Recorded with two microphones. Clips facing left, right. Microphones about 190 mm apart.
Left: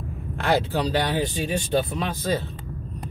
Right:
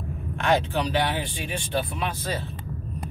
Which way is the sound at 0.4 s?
35° left (ahead or behind).